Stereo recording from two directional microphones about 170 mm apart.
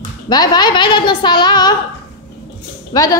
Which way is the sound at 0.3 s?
25° left (ahead or behind).